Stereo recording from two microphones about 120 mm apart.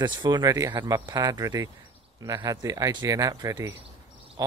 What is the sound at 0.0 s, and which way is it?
Speech, 40° right (ahead or behind).